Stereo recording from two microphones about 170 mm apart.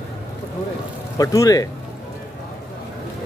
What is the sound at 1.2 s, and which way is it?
Speech, 20° left (ahead or behind).